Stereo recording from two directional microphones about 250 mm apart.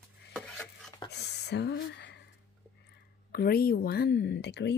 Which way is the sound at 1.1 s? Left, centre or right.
Left.